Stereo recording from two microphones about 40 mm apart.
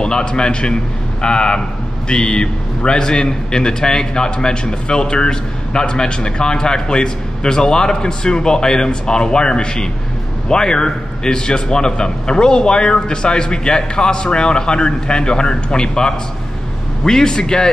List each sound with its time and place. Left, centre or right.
0.0 s a man's voice: left